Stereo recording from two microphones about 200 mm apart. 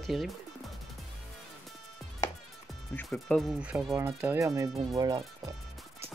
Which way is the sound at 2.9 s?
5° left (ahead or behind).